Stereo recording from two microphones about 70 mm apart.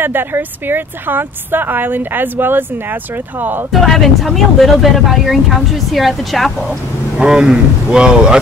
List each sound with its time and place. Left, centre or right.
0.0 s speech: right
3.8 s speech: centre
7.2 s speech: centre